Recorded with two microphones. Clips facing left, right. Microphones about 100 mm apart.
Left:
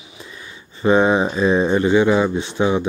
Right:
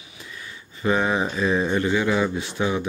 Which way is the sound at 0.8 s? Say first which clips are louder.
Left 7 dB; 25° left (ahead or behind).